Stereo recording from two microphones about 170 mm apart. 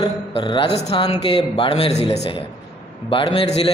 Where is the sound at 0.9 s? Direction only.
25° left (ahead or behind).